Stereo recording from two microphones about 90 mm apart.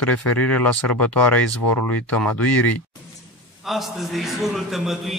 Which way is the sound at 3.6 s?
Centre (ahead or behind).